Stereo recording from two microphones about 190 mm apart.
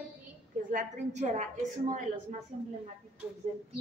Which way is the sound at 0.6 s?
45° right (ahead or behind).